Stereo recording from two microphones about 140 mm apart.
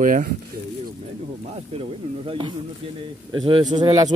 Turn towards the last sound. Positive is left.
turn(degrees=-30)  # may be behind; listen again after turning